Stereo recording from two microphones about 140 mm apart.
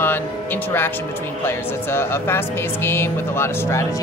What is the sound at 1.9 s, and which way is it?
Speech, 15° left (ahead or behind).